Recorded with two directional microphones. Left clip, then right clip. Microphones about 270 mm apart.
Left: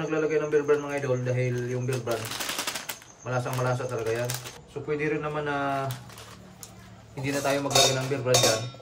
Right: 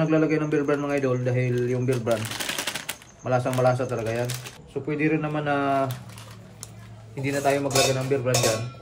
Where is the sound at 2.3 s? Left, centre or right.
Centre.